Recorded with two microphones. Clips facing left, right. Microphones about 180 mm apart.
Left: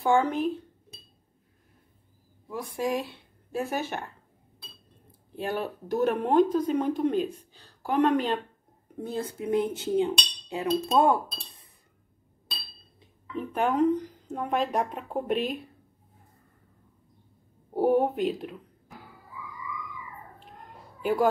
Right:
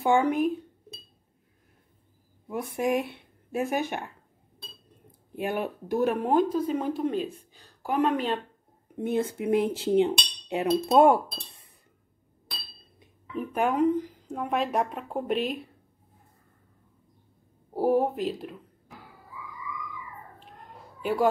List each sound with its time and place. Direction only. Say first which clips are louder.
0.0 s speech: right 1 dB; 15° right (ahead or behind)
2.4 s cutlery: right 2 dB; 20° right (ahead or behind)
3.5 s speech: right 2 dB; 15° right (ahead or behind)
5.3 s a woman's voice: right 1 dB; 15° right (ahead or behind)
8.9 s cutlery: right 5 dB; 20° right (ahead or behind)
9.4 s speech: even; 70° right (ahead or behind)
9.8 s cutlery: right 3 dB; 25° right (ahead or behind)
13.4 s speech: even; 10° right (ahead or behind)
17.7 s speech: left 1 dB; centre (ahead or behind)
21.0 s speech: even; centre (ahead or behind)